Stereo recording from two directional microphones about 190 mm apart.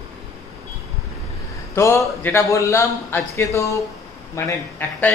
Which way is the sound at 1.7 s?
15° left (ahead or behind).